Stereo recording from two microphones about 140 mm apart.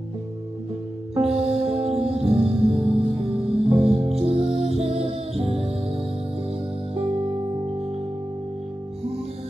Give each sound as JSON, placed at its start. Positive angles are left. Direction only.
{"t": 1.2, "sound": "music", "side_deg": -45}